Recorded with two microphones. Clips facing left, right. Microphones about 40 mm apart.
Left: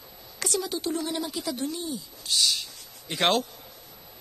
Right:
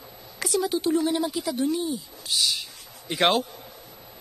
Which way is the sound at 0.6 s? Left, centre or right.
Centre.